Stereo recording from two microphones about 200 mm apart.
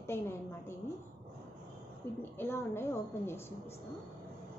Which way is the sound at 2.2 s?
10° left (ahead or behind).